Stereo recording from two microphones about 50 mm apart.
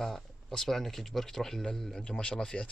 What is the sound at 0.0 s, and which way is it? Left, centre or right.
Speech, centre.